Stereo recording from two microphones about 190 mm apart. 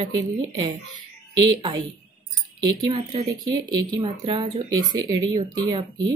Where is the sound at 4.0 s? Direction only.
25° right (ahead or behind).